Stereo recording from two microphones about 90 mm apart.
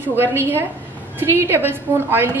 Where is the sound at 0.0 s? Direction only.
25° right (ahead or behind).